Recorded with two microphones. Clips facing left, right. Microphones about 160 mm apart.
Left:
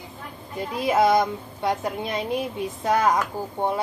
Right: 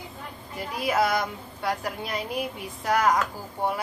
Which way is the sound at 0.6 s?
25° left (ahead or behind).